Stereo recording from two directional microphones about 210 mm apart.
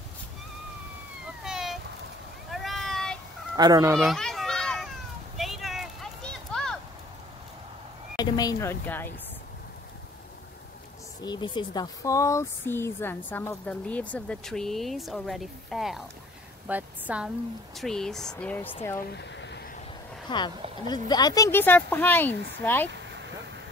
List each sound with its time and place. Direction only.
1.4 s a sound: centre (ahead or behind)
2.5 s vehicle: centre (ahead or behind)
3.5 s speech: 20° right (ahead or behind)
3.9 s children playing: centre (ahead or behind)
5.4 s a sound: centre (ahead or behind)
8.2 s speech: 20° left (ahead or behind)
11.1 s a woman's voice: 20° left (ahead or behind)
18.9 s a sound: 55° left (ahead or behind)
20.2 s speech: 20° left (ahead or behind)